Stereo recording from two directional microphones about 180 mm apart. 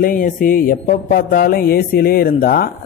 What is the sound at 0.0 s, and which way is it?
Mantra, 50° left (ahead or behind).